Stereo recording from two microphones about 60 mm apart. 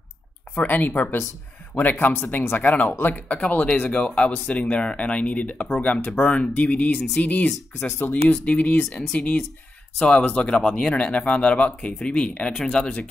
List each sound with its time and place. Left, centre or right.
0.6 s speech: left